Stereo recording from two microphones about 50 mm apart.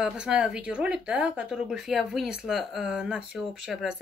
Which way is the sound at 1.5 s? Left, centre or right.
Centre.